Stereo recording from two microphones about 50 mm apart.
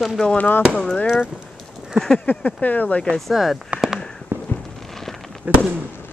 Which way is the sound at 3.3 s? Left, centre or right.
Centre.